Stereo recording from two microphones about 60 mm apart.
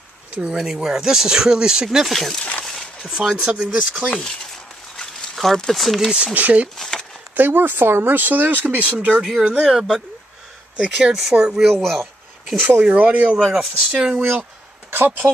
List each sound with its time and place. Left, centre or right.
0.3 s speech: centre
2.1 s speech: centre
2.6 s a sound: centre
3.0 s speech: centre
4.9 s a sound: centre
6.3 s speech: right
6.8 s a sound: centre
7.3 s speech: right
9.6 s speech: centre
11.7 s speech: centre
12.8 s speech: right
13.4 s speech: centre
14.9 s speech: right